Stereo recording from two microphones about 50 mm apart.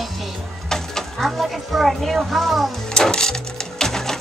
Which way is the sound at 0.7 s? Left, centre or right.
Centre.